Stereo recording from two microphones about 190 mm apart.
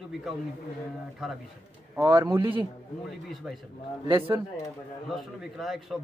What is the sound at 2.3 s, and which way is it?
Speech, 10° right (ahead or behind).